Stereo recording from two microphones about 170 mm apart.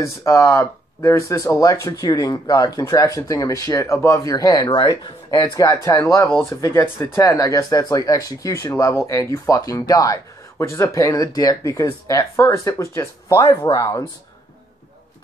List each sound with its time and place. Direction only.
0.0 s speech: 15° left (ahead or behind)